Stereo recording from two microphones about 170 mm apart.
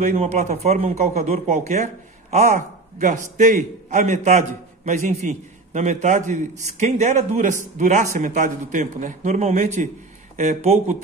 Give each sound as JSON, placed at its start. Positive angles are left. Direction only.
{"t": 0.0, "sound": "a man's voice", "side_deg": -40}